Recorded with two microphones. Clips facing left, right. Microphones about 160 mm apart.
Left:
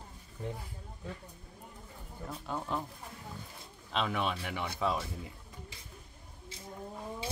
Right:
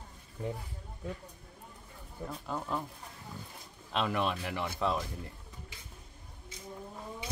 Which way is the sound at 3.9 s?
Centre (ahead or behind).